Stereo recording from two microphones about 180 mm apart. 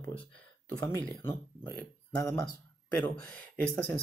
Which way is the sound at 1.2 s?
10° left (ahead or behind).